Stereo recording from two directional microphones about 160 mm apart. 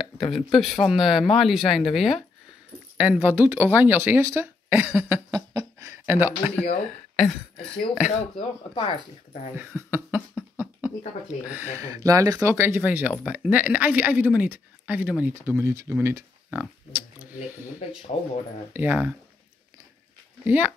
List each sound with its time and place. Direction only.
0.3 s speech: centre (ahead or behind)
5.3 s a sound: 20° right (ahead or behind)
6.6 s speech: 40° left (ahead or behind)
8.7 s speech: 30° left (ahead or behind)
9.6 s cough: 10° right (ahead or behind)
11.5 s speech: 15° right (ahead or behind)
18.1 s speech: 40° left (ahead or behind)
18.7 s speech: 10° right (ahead or behind)
20.4 s speech: 10° right (ahead or behind)